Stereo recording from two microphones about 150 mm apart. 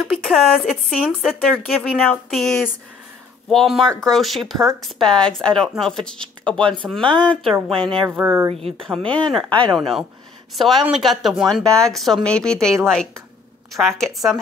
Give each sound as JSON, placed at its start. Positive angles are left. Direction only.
{"t": 0.1, "sound": "speech", "side_deg": 0}
{"t": 1.8, "sound": "speech", "side_deg": 10}
{"t": 7.0, "sound": "speech", "side_deg": -30}
{"t": 8.2, "sound": "speech", "side_deg": -15}
{"t": 8.5, "sound": "speech", "side_deg": -40}
{"t": 8.8, "sound": "speech", "side_deg": 5}